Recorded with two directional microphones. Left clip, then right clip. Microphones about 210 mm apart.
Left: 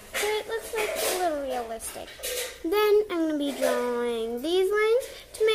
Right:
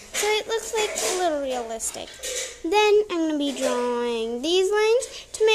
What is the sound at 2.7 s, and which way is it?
A child's voice, 10° right (ahead or behind).